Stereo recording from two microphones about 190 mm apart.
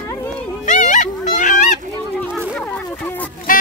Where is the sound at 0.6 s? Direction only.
40° left (ahead or behind).